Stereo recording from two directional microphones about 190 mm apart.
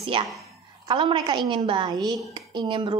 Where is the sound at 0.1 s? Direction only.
25° right (ahead or behind).